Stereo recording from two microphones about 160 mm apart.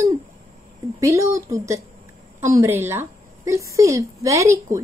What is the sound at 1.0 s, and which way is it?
A woman's voice, 20° right (ahead or behind).